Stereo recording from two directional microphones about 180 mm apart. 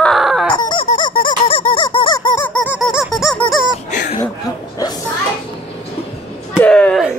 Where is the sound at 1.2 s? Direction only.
30° left (ahead or behind).